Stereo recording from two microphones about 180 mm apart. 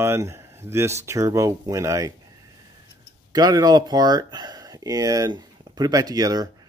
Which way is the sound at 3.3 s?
20° right (ahead or behind).